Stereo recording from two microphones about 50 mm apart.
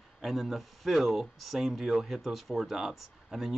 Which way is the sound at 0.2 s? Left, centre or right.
Centre.